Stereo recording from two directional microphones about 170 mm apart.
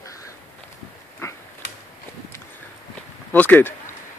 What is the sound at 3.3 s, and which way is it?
Speech, 10° left (ahead or behind).